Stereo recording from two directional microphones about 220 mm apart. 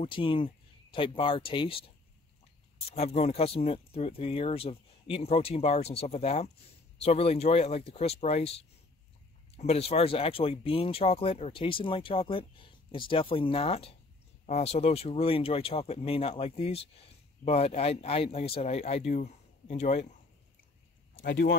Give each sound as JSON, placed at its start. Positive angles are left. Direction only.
{"t": 0.0, "sound": "speech", "side_deg": 25}
{"t": 2.9, "sound": "speech", "side_deg": 30}
{"t": 21.2, "sound": "speech", "side_deg": 45}